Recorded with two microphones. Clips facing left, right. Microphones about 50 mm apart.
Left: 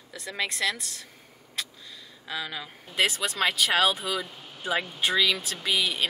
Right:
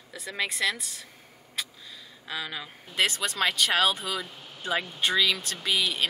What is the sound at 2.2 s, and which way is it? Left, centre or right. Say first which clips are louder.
Speech: left 1 dB; centre.